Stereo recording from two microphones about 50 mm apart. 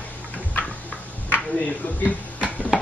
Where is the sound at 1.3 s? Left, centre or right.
Left.